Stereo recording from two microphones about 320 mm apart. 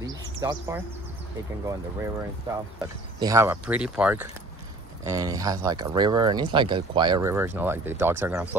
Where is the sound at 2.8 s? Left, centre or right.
Centre.